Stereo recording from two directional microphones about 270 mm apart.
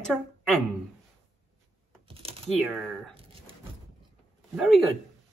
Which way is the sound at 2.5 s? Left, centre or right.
Centre.